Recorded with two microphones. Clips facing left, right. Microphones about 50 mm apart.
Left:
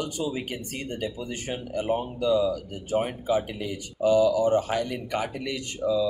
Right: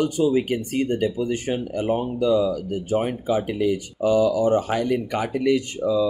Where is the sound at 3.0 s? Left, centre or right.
Right.